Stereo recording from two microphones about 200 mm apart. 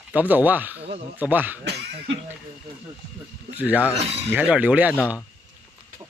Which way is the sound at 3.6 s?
5° right (ahead or behind).